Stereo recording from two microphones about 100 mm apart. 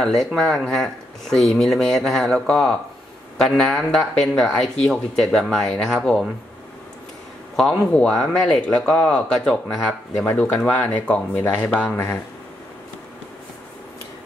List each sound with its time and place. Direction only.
0.0 s speech: 5° left (ahead or behind)
7.5 s speech: 10° left (ahead or behind)